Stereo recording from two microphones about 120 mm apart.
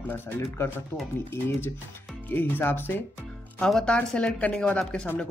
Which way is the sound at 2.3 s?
15° left (ahead or behind).